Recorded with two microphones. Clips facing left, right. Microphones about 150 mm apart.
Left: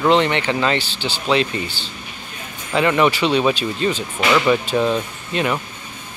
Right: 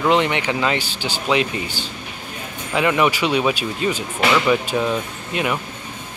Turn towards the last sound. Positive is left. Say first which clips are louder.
# left 1 dB
turn(degrees=-10)  # may be behind; listen again after turning